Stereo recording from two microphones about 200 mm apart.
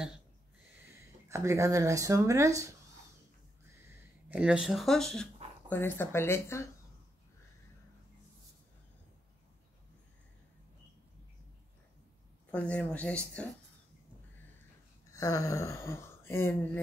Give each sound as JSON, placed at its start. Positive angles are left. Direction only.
{"t": 1.3, "sound": "speech", "side_deg": -15}
{"t": 4.3, "sound": "speech", "side_deg": -5}
{"t": 12.4, "sound": "speech", "side_deg": 5}
{"t": 15.1, "sound": "speech", "side_deg": 15}